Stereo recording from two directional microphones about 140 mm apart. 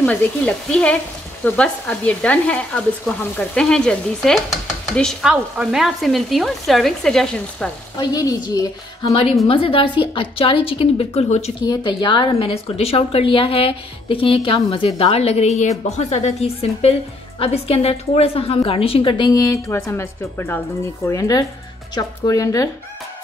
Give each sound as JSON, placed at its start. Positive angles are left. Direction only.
{"t": 0.0, "sound": "sizzle", "side_deg": 10}
{"t": 4.9, "sound": "frying", "side_deg": 5}
{"t": 8.0, "sound": "speech", "side_deg": 25}
{"t": 9.5, "sound": "a woman's voice", "side_deg": 40}
{"t": 11.6, "sound": "a woman's voice", "side_deg": 30}